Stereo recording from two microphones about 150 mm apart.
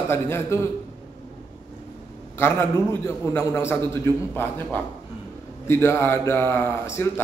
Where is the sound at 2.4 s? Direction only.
15° left (ahead or behind).